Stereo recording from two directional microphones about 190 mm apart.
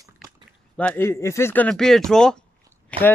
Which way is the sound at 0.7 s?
10° left (ahead or behind).